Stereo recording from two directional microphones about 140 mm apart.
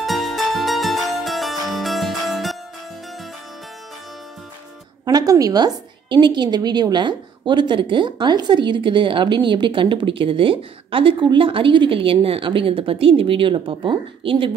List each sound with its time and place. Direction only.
0.0 s music: centre (ahead or behind)
5.0 s a woman's voice: 25° right (ahead or behind)